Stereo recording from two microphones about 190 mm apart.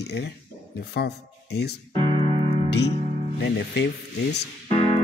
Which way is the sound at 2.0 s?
30° right (ahead or behind).